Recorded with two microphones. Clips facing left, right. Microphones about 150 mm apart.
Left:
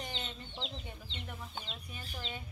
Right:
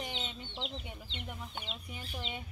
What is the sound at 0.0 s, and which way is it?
Chicken, 10° right (ahead or behind).